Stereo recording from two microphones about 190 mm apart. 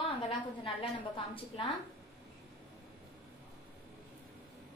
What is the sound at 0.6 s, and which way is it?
Speech, 30° left (ahead or behind).